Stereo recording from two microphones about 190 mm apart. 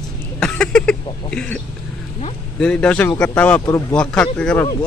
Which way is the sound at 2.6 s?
5° left (ahead or behind).